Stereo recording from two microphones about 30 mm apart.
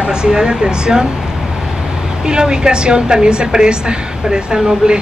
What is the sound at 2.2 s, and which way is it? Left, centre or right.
A woman's voice, right.